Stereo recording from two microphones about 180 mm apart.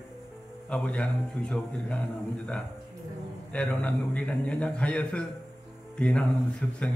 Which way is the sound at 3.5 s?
5° left (ahead or behind).